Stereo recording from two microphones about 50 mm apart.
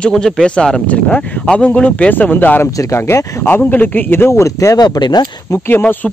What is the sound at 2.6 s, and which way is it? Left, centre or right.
Speech, left.